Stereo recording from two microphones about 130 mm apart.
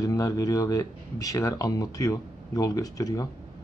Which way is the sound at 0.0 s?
25° left (ahead or behind).